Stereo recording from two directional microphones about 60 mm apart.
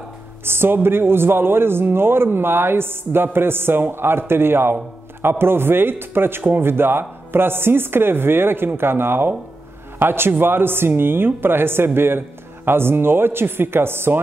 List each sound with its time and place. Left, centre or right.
0.5 s speech: right